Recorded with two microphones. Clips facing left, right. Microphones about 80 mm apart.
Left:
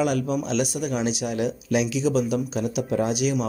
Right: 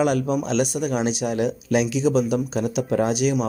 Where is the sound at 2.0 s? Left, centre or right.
Right.